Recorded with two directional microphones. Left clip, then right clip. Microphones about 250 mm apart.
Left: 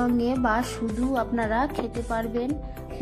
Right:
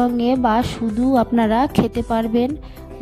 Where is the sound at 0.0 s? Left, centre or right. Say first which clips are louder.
Right 7 dB; right.